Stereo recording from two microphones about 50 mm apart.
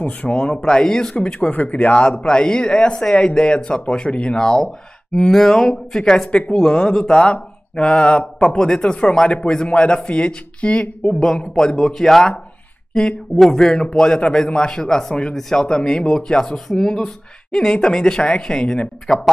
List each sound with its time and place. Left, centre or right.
0.0 s a man's voice: left
1.5 s a man's voice: left
11.1 s a man's voice: centre
13.5 s a man's voice: centre